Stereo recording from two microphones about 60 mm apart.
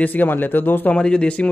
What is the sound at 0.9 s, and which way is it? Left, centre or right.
Speech, centre.